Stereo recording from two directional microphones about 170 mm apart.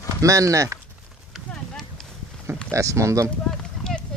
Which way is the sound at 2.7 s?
15° right (ahead or behind).